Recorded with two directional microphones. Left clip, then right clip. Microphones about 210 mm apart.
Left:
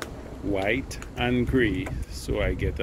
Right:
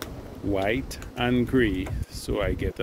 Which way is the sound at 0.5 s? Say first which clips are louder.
Even; 15° right (ahead or behind).